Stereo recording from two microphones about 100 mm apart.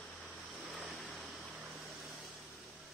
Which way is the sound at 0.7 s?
5° right (ahead or behind).